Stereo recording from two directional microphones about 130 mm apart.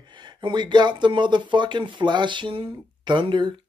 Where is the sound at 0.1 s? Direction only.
35° right (ahead or behind).